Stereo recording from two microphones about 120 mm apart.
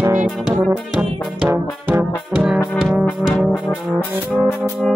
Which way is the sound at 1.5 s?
15° right (ahead or behind).